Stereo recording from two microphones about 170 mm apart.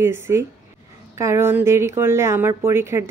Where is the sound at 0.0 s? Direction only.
15° right (ahead or behind).